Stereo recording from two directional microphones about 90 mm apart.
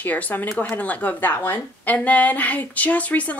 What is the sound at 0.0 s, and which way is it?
A woman's voice, 20° left (ahead or behind).